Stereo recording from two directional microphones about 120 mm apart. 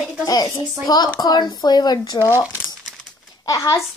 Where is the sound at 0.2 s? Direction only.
30° left (ahead or behind).